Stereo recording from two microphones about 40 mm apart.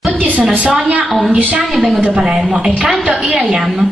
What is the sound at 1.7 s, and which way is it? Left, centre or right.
Speech, centre.